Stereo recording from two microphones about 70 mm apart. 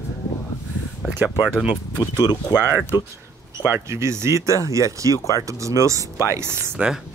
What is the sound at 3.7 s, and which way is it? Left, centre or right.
Speech, right.